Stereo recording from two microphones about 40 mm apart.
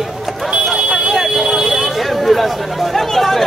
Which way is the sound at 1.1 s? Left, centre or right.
Centre.